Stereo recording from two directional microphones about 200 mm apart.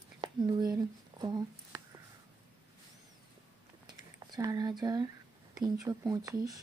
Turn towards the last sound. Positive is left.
turn(degrees=-20)  # may be behind; listen again after turning